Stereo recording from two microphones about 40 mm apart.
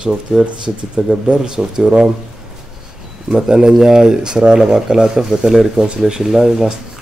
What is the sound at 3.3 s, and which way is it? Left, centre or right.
Speech, centre.